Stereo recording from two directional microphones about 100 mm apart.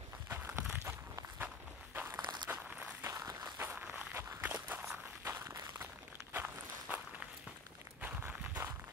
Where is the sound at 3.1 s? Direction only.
35° right (ahead or behind).